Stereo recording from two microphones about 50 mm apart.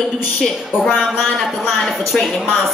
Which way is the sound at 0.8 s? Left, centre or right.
Centre.